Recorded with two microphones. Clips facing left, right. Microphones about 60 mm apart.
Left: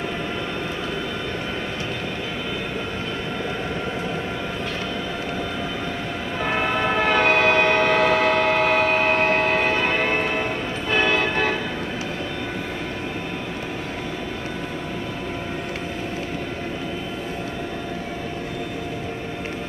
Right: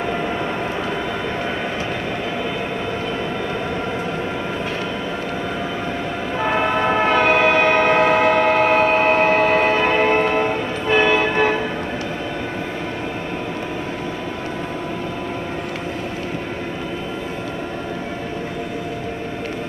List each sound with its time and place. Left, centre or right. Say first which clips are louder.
6.4 s train: right 4 dB; centre
10.2 s music: right 5 dB; right